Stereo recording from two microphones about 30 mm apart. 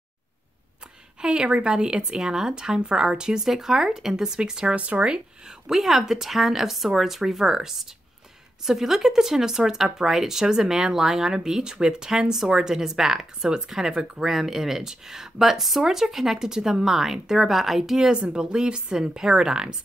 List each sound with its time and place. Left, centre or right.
1.2 s speech: right
3.4 s speech: centre
4.7 s speech: right
5.7 s speech: centre
18.3 s speech: right